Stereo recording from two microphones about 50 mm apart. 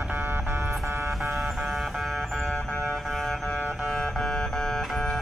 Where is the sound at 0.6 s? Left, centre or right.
Centre.